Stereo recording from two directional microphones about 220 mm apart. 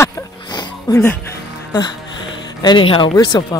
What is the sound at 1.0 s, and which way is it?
Music, 10° left (ahead or behind).